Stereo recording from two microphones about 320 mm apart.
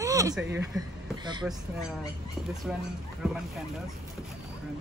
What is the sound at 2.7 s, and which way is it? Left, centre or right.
Speech, centre.